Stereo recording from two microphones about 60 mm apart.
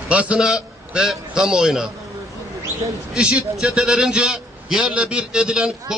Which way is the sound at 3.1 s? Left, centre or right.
Centre.